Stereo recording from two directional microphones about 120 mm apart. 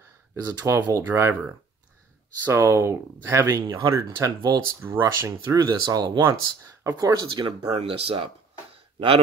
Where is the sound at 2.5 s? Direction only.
25° right (ahead or behind).